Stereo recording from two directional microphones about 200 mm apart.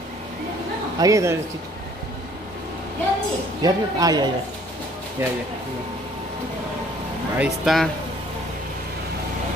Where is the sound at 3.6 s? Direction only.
20° right (ahead or behind).